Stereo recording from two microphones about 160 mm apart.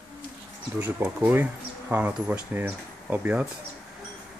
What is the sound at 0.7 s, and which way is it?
Speech, 10° right (ahead or behind).